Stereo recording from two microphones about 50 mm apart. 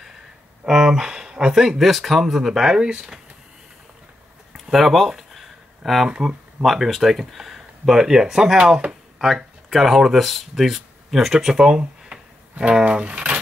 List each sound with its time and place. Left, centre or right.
0.7 s speech: centre
4.6 s speech: centre
6.0 s speech: centre
6.6 s speech: centre
12.1 s a sound: centre